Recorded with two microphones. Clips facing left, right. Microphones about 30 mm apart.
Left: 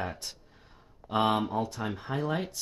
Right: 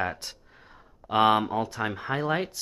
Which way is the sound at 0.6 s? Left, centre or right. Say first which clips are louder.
Right 5 dB; right.